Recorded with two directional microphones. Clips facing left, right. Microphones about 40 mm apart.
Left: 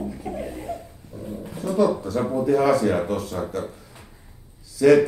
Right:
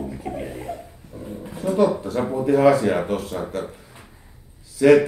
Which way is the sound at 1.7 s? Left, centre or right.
Right.